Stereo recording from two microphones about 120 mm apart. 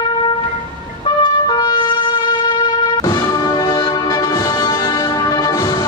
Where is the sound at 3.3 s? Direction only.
35° left (ahead or behind).